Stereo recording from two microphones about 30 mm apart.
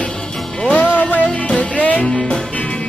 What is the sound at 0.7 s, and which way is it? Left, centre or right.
Music, left.